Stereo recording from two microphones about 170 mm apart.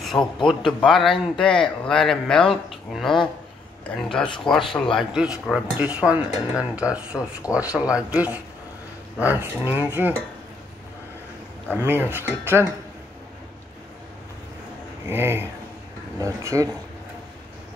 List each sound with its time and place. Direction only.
0.0 s a sound: centre (ahead or behind)
0.5 s speech: centre (ahead or behind)
11.8 s speech: 10° right (ahead or behind)
15.0 s speech: 15° right (ahead or behind)